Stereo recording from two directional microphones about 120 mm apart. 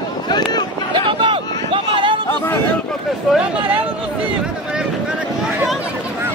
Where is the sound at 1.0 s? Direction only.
45° right (ahead or behind).